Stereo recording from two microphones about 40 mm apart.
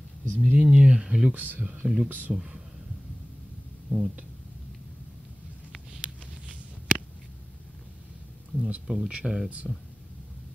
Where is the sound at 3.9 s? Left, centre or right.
Right.